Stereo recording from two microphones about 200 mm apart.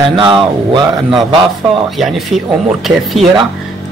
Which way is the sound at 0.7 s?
25° right (ahead or behind).